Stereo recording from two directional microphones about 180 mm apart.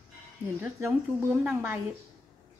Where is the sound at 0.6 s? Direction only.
15° right (ahead or behind).